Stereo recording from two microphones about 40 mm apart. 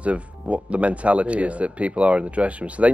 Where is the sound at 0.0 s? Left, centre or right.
Right.